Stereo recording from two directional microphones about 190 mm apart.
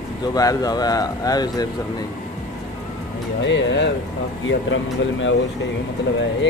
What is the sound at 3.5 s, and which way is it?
Speech, 70° left (ahead or behind).